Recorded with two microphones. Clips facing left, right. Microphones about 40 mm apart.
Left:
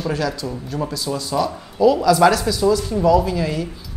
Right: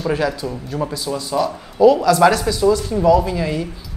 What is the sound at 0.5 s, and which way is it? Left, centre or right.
Speech, centre.